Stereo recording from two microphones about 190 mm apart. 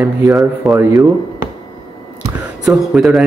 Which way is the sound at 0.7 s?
Centre (ahead or behind).